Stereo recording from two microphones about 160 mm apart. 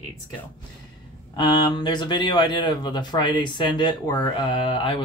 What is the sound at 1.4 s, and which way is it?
Speech, 25° left (ahead or behind).